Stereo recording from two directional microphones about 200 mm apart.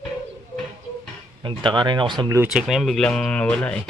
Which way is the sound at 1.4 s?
25° right (ahead or behind).